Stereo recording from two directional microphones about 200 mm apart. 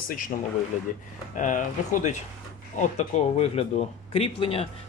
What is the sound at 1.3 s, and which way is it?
Speech, 40° left (ahead or behind).